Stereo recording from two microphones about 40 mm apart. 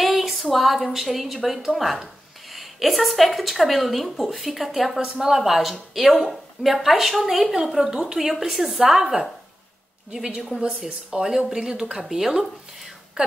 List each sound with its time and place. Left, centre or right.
0.0 s a woman's voice: centre